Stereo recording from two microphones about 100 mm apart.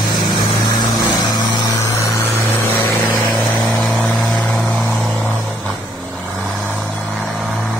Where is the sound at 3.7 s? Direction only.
Centre (ahead or behind).